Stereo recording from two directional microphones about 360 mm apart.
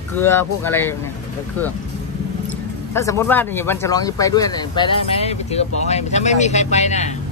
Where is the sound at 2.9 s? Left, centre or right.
Centre.